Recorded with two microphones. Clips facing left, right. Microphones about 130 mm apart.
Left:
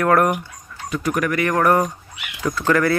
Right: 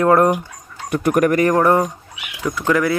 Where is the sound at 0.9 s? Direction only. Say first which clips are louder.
Right 6 dB; 55° right (ahead or behind).